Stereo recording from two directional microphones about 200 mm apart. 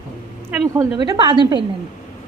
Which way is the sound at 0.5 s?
15° right (ahead or behind).